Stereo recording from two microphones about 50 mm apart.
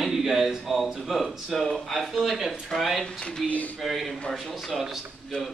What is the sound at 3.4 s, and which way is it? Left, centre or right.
Speech, left.